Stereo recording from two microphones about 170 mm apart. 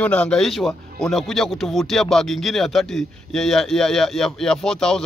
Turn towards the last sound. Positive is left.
turn(degrees=5)  # may be behind; listen again after turning